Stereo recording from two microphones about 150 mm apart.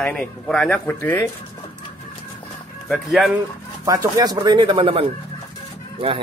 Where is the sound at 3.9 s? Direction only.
25° right (ahead or behind).